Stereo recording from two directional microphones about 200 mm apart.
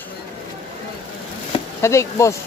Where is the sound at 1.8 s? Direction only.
15° left (ahead or behind).